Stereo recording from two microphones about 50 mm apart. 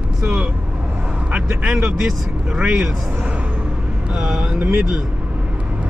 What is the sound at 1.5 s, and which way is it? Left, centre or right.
Speech, centre.